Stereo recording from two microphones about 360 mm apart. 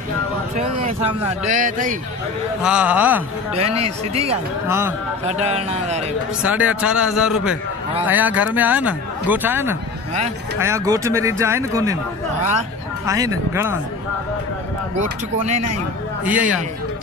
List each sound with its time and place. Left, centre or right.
0.6 s speech: centre
2.6 s speech: centre
3.7 s speech: right
4.3 s speech: centre
5.2 s speech: centre
6.4 s speech: centre
13.0 s speech: centre
15.0 s speech: centre
16.3 s speech: centre